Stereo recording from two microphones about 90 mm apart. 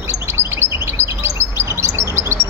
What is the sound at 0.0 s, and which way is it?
Chirp, 30° right (ahead or behind).